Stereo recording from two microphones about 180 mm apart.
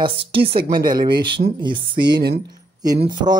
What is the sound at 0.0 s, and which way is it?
Speech, 30° right (ahead or behind).